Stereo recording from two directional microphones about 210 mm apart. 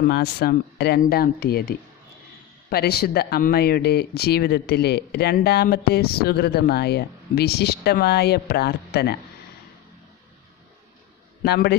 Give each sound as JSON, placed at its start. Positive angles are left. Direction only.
{"t": 0.0, "sound": "speech", "side_deg": 50}
{"t": 11.4, "sound": "speech", "side_deg": 50}